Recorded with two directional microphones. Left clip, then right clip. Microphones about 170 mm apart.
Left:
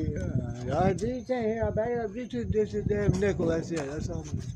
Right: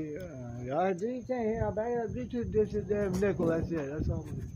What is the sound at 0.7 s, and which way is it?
Speech, 15° left (ahead or behind).